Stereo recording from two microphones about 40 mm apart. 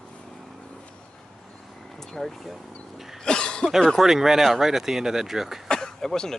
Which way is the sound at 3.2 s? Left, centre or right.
Left.